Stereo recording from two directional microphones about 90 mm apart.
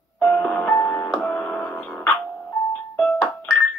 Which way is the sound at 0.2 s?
15° left (ahead or behind).